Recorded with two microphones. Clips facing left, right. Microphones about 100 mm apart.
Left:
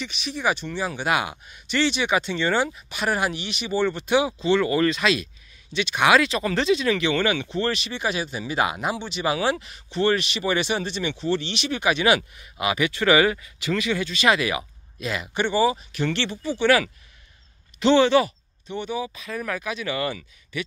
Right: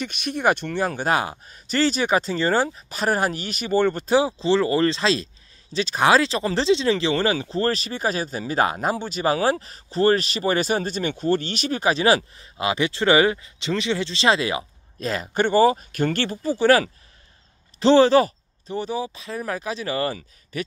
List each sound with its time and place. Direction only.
0.0 s speech: 50° right (ahead or behind)